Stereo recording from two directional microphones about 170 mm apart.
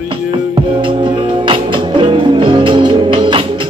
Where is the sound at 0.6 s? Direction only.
30° right (ahead or behind).